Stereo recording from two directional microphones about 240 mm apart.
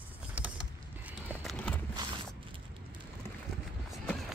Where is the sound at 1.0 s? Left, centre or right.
Centre.